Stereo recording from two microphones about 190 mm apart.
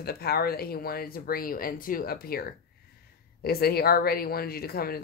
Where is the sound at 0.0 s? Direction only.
55° left (ahead or behind).